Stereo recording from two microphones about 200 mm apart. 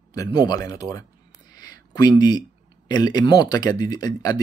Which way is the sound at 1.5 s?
20° left (ahead or behind).